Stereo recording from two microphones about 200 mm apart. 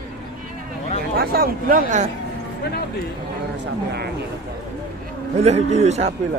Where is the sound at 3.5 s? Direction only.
55° right (ahead or behind).